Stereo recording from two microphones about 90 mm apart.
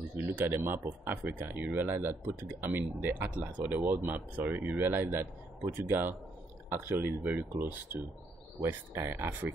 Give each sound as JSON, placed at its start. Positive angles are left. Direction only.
{"t": 0.2, "sound": "speech", "side_deg": -25}